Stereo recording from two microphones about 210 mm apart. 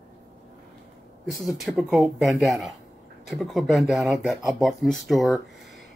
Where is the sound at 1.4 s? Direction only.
Centre (ahead or behind).